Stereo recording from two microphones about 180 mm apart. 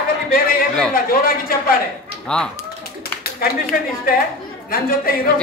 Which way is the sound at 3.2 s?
60° left (ahead or behind).